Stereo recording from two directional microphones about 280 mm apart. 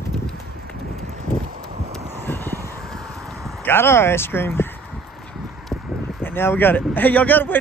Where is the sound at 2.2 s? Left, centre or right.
Centre.